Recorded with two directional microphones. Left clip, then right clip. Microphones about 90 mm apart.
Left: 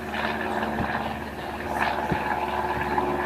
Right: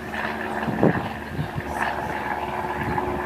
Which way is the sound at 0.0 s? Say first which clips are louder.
Even; 5° left (ahead or behind).